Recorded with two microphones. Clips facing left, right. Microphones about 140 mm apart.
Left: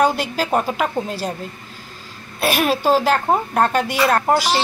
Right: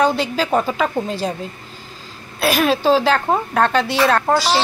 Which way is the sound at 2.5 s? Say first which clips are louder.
Right 2 dB; 10° left (ahead or behind).